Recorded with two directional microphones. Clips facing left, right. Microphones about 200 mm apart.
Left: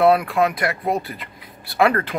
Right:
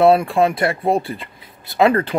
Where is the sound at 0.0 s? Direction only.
25° right (ahead or behind).